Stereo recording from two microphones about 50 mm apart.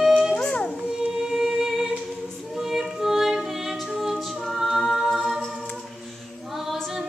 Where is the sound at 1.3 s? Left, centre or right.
Centre.